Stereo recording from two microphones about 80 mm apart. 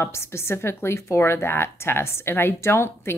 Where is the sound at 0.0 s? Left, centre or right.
Left.